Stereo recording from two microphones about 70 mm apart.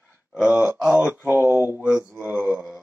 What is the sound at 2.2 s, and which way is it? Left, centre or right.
Speech, centre.